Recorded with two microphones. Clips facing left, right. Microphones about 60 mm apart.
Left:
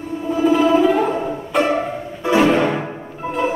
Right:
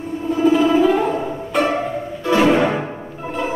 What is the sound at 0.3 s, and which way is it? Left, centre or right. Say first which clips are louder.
Music: even; centre.